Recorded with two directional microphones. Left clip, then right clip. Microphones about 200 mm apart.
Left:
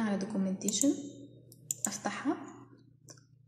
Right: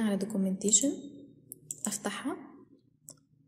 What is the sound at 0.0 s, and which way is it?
Speech, 45° right (ahead or behind).